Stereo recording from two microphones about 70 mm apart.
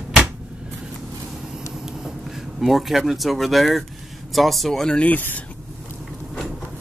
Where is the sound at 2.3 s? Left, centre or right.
Centre; by 5.4 s left.